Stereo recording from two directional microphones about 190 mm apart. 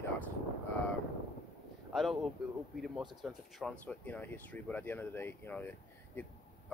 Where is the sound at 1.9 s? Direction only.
Centre (ahead or behind).